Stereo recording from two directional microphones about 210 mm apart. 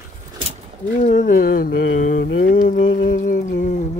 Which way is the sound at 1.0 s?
40° left (ahead or behind).